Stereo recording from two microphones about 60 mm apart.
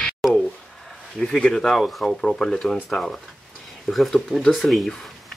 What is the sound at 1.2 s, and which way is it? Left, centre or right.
Speech, centre.